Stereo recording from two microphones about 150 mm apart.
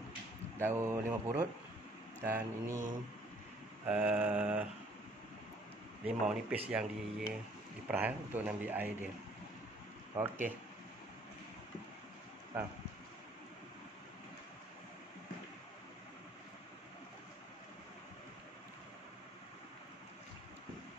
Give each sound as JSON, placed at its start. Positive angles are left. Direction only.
{"t": 0.6, "sound": "speech", "side_deg": -15}
{"t": 3.8, "sound": "speech", "side_deg": -10}
{"t": 6.0, "sound": "speech", "side_deg": -10}
{"t": 12.5, "sound": "speech", "side_deg": -15}